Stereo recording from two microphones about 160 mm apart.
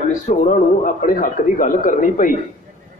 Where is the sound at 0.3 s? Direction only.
50° left (ahead or behind).